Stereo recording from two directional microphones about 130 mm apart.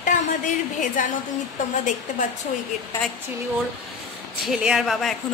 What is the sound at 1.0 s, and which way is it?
Speech, 85° left.